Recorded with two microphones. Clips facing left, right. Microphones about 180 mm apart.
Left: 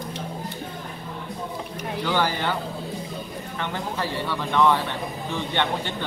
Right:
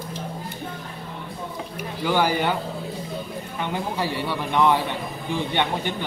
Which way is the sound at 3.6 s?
15° right (ahead or behind).